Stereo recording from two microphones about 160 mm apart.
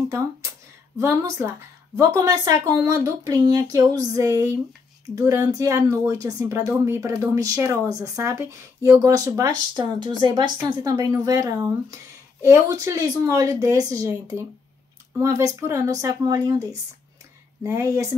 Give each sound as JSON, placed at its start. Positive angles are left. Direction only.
{"t": 0.9, "sound": "a woman's voice", "side_deg": -20}
{"t": 17.6, "sound": "speech", "side_deg": -20}